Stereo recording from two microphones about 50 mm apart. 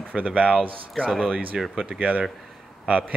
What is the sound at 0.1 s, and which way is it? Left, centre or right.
Speech, right.